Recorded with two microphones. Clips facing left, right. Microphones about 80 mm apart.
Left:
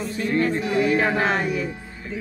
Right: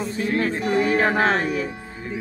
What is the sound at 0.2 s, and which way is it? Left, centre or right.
Music, centre.